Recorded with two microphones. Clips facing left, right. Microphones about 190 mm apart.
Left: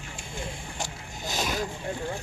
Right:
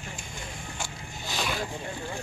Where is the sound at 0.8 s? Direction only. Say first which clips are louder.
Left 5 dB; 45° left (ahead or behind).